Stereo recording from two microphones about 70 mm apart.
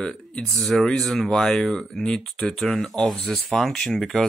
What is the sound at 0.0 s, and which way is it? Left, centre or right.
Speech, centre.